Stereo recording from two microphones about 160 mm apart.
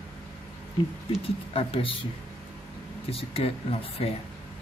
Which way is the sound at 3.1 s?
35° left (ahead or behind).